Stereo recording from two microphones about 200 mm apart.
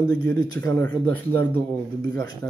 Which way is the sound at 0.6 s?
10° left (ahead or behind).